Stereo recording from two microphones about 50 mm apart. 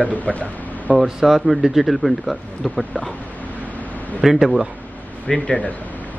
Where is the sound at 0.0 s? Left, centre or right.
Left.